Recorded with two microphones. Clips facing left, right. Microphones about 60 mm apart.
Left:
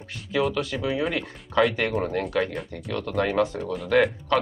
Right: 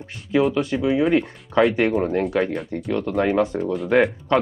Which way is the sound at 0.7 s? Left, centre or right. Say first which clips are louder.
Right 6 dB; centre.